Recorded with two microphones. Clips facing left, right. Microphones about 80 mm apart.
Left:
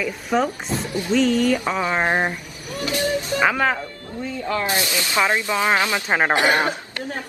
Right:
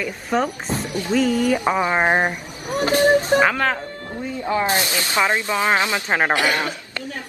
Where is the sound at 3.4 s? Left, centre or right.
Centre.